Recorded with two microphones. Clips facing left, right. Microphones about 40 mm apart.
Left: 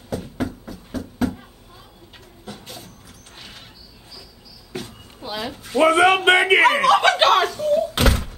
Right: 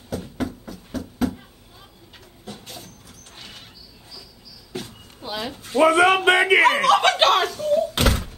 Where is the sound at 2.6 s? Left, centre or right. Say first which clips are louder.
Left 1 dB; centre.